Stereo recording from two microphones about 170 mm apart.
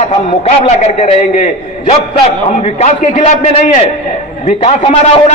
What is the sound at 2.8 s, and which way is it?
A man's voice, 40° left (ahead or behind).